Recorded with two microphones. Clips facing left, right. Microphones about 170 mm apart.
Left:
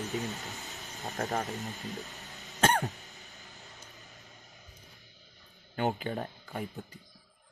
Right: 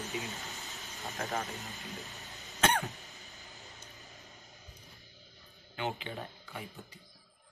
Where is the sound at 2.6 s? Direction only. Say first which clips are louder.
Left 3 dB; 40° left (ahead or behind).